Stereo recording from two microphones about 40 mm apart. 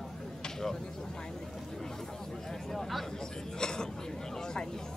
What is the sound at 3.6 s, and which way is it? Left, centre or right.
Chatter, centre.